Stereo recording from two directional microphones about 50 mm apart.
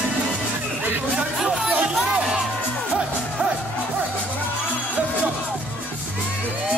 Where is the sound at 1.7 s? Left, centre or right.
Right.